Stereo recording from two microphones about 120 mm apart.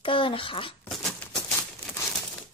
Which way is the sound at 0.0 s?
45° left (ahead or behind).